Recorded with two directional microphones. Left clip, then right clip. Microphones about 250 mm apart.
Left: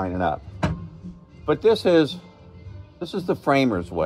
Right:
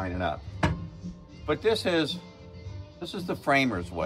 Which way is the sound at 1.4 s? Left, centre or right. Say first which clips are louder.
Left 7 dB; left.